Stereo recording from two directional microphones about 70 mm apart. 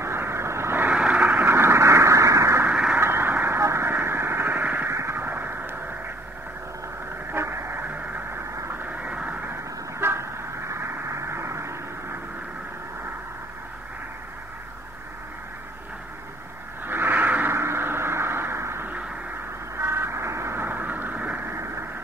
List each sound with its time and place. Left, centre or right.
0.0 s vehicle: right
0.8 s vehicle: centre
1.4 s radio: right
2.7 s radio: centre
3.0 s vehicle: right
4.9 s radio: right
7.3 s radio: right
8.8 s vehicle: right
10.7 s radio: right
16.8 s a sound: right
17.6 s a sound: right
19.8 s vehicle: right
21.5 s vehicle: right